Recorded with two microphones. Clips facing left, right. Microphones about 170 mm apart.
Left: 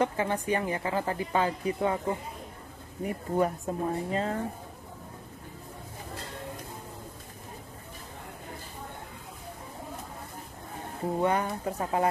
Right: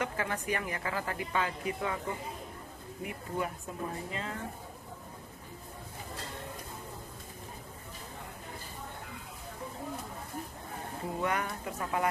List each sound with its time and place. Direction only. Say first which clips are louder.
0.0 s a woman's voice: left 6 dB; 30° left (ahead or behind)
11.1 s speech: left 6 dB; 30° left (ahead or behind)